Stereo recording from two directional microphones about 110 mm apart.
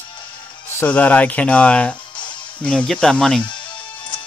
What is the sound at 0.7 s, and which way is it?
Speech, 15° left (ahead or behind).